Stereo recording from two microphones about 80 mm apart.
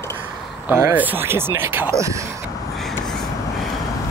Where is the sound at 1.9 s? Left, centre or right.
Right.